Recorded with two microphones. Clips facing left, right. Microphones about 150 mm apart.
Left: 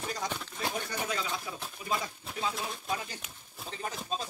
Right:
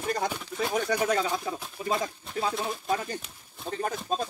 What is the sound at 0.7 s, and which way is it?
Speech, 75° right (ahead or behind).